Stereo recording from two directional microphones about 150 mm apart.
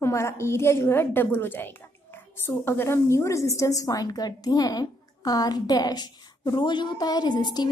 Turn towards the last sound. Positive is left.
turn(degrees=30)  # may be behind; listen again after turning